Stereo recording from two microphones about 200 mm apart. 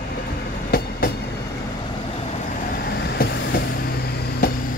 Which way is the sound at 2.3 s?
45° left (ahead or behind).